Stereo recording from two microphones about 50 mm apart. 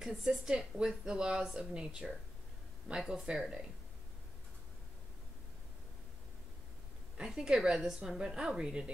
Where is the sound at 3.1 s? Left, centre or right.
Centre.